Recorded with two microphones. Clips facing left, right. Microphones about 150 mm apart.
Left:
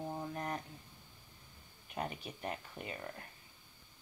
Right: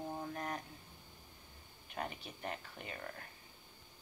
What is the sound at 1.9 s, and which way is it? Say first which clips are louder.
Speech: left 2 dB; 20° left (ahead or behind).